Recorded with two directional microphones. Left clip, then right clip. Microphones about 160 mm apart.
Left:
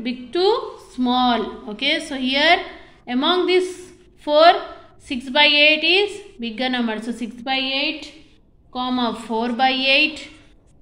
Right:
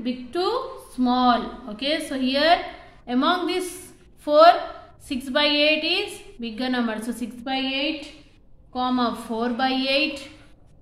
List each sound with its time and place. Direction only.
0.0 s a woman's voice: 15° left (ahead or behind)